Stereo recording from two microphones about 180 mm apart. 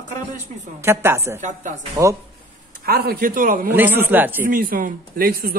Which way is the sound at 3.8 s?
10° right (ahead or behind).